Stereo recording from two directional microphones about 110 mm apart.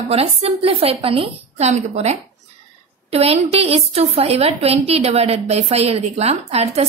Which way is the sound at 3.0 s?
65° right (ahead or behind).